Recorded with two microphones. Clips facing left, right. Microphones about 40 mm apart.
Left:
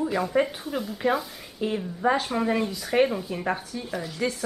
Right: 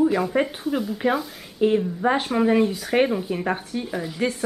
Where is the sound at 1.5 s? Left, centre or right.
Centre.